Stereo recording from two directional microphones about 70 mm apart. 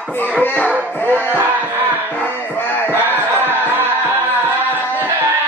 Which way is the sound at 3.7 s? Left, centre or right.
Right.